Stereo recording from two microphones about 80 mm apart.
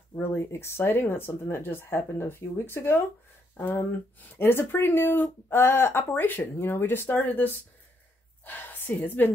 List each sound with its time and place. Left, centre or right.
0.1 s a woman's voice: left